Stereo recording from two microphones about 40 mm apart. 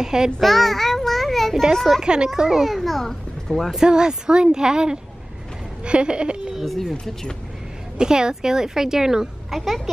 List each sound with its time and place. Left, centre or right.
0.0 s a woman's voice: centre
0.4 s a child's voice: centre
2.0 s a woman's voice: centre
2.6 s a child's voice: centre
3.8 s speech: centre
6.6 s speech: centre
8.0 s a woman's voice: centre
9.5 s a child's voice: centre